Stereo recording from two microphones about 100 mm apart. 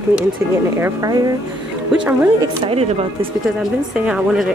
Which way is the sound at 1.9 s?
10° right (ahead or behind).